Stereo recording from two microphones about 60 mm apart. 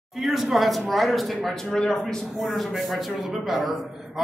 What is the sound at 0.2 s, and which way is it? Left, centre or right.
Speech, centre.